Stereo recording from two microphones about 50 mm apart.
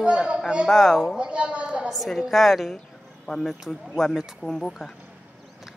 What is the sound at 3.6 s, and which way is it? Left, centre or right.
Speech, centre.